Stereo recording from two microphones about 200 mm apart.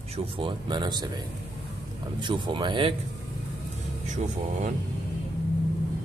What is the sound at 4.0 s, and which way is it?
Speech, 35° right (ahead or behind).